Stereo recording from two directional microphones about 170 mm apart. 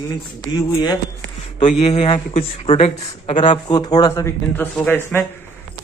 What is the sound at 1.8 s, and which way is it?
Speech, 35° left (ahead or behind).